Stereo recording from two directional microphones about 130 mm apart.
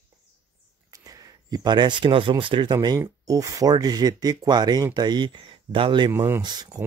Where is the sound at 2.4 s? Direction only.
40° right (ahead or behind).